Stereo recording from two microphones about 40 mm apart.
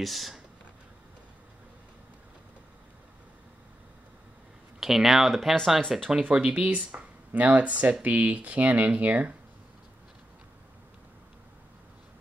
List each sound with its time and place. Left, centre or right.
0.0 s speech: centre
4.7 s speech: centre
6.3 s speech: right
6.9 s speech: right